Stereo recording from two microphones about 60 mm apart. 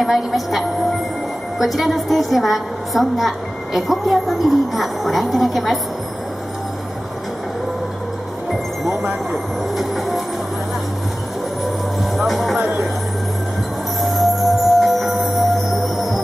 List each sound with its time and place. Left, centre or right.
0.0 s a woman's voice: centre
8.5 s speech: centre
12.2 s a woman's voice: centre
14.0 s music: centre